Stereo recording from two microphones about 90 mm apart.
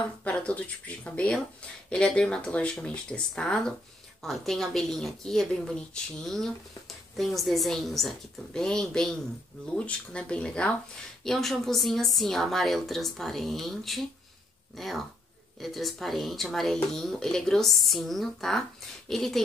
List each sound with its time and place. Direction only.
0.2 s a woman's voice: 15° left (ahead or behind)